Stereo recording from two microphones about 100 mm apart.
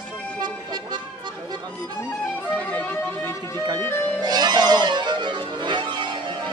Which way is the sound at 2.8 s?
25° left (ahead or behind).